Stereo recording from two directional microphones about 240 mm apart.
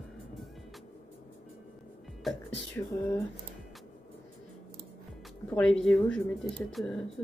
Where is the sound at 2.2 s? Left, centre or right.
Centre.